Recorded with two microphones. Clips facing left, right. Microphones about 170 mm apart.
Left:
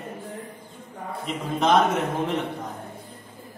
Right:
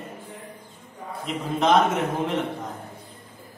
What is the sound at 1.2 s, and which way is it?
A man's voice, centre (ahead or behind).